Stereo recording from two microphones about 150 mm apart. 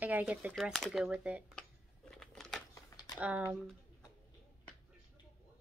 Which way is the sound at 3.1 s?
10° right (ahead or behind).